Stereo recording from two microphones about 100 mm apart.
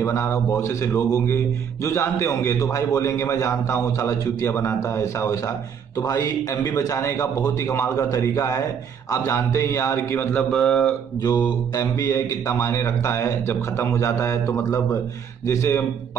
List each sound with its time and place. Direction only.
0.0 s a man's voice: 30° left (ahead or behind)
10.5 s speech: 10° left (ahead or behind)
11.1 s a man's voice: 45° left (ahead or behind); by 15.8 s 30° left (ahead or behind)